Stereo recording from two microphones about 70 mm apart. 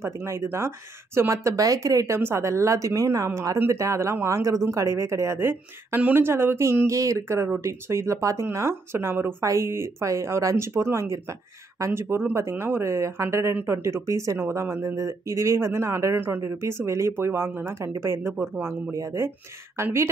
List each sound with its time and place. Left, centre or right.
0.0 s speech: right
2.1 s speech: right
8.5 s speech: right
16.2 s speech: right
16.4 s speech: right